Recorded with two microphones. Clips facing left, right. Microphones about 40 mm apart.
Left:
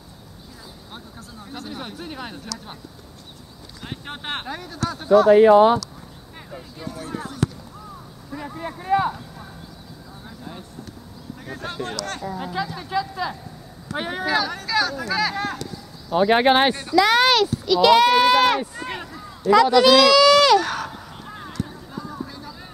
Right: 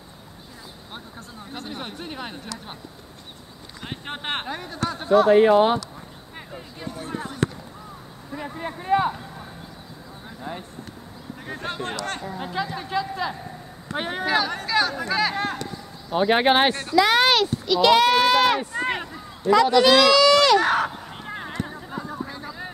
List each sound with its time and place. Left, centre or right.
1.5 s speech: centre
3.8 s speech: centre
6.3 s a sound: centre
11.4 s speech: centre
16.2 s speech: centre
18.6 s speech: centre
18.9 s a sound: centre
19.5 s speech: centre
20.5 s a sound: right